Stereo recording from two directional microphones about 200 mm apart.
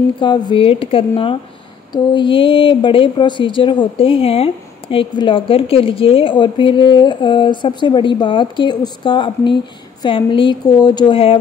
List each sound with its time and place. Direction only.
0.2 s speech: 25° left (ahead or behind)